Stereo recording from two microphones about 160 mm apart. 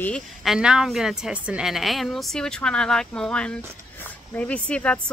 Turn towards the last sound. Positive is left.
turn(degrees=5)  # may be behind; listen again after turning